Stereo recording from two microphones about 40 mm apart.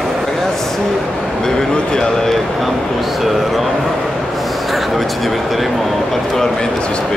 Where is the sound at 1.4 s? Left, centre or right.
Centre.